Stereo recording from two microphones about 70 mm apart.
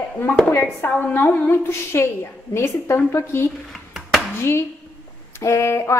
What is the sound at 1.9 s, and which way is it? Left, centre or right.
A woman's voice, left.